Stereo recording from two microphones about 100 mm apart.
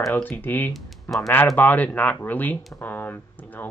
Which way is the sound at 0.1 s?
20° left (ahead or behind).